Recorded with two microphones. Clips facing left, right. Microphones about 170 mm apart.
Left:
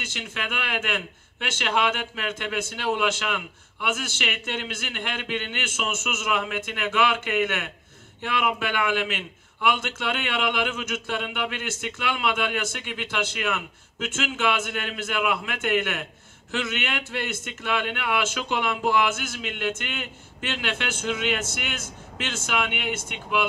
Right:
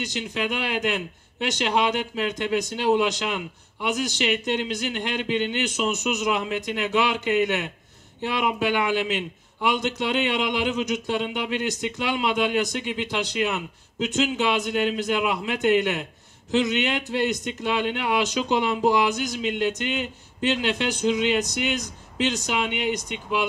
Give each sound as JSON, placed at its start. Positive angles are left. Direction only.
{"t": 0.3, "sound": "speech", "side_deg": -15}
{"t": 6.0, "sound": "speech", "side_deg": -35}
{"t": 6.3, "sound": "a man's voice", "side_deg": -20}